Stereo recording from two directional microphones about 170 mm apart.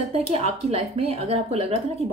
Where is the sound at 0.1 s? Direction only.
40° right (ahead or behind).